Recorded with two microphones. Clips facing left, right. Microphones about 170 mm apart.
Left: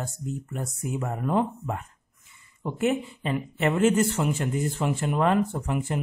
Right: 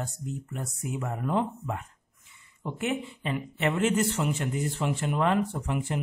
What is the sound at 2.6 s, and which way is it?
Speech, 40° left (ahead or behind).